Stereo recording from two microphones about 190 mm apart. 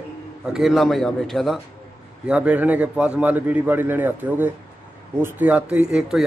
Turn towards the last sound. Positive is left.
turn(degrees=-5)  # may be behind; listen again after turning